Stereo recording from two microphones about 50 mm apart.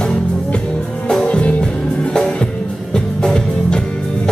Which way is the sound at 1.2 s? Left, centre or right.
Left.